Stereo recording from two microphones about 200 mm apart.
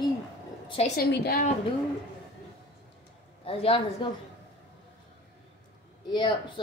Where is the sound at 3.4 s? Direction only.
30° left (ahead or behind).